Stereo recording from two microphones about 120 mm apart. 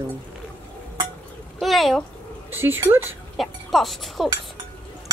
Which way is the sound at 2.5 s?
20° right (ahead or behind).